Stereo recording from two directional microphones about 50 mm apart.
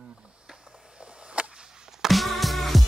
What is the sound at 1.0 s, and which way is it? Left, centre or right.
Whip, right.